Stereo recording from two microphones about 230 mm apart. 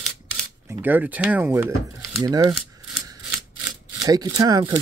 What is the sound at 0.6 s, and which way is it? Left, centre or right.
Speech, centre.